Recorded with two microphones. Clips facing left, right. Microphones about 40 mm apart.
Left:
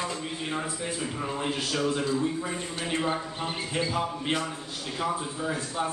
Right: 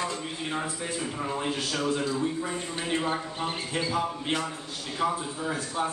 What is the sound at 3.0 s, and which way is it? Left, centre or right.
A man's voice, centre.